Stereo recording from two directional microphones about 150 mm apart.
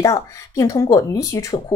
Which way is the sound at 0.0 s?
20° left (ahead or behind).